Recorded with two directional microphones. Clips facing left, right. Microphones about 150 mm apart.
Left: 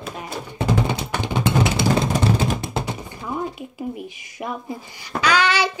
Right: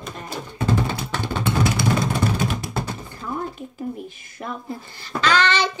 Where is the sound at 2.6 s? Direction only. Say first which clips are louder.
Left 2 dB; 20° left (ahead or behind).